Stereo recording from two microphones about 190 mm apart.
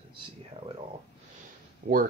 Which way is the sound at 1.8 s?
50° right (ahead or behind).